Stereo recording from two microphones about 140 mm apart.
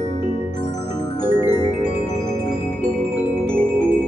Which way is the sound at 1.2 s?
25° left (ahead or behind).